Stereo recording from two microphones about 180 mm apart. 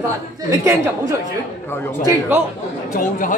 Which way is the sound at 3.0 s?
50° left (ahead or behind).